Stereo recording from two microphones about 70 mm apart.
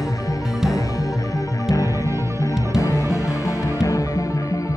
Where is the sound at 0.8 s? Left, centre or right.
Left.